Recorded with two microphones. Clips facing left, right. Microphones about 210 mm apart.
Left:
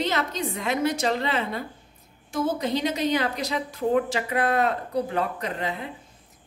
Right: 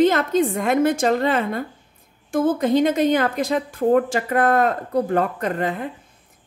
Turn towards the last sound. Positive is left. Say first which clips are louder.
# right 6 dB
turn(degrees=-50)  # may be behind; listen again after turning